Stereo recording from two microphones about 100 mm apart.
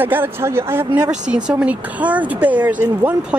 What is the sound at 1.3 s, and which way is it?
Speech, 10° right (ahead or behind).